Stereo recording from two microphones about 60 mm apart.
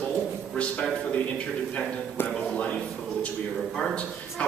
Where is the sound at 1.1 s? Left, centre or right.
Centre.